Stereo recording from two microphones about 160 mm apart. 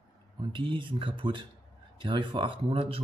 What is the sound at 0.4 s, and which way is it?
Speech, 30° right (ahead or behind).